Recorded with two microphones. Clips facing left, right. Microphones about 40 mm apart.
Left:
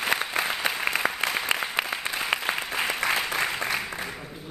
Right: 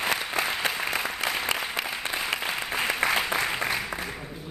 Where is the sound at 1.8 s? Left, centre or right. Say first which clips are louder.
Left 2 dB; left.